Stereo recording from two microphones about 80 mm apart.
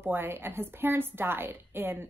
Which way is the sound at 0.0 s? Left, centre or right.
Right.